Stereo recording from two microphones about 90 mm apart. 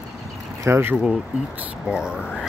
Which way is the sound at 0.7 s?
30° right (ahead or behind).